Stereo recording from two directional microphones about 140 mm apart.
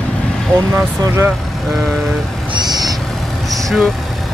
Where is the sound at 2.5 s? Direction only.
30° right (ahead or behind).